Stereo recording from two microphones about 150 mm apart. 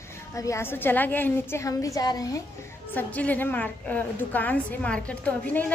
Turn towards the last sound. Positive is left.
turn(degrees=10)  # may be behind; listen again after turning